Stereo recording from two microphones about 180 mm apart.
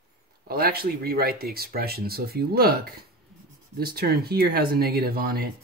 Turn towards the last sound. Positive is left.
turn(degrees=-55)  # may be behind; listen again after turning